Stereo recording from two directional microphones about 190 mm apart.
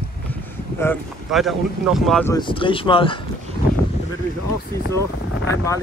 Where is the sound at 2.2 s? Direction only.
20° left (ahead or behind).